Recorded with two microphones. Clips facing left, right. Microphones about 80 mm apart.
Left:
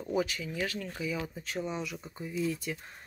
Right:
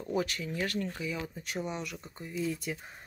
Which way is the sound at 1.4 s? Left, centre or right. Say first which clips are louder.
Left 1 dB; centre.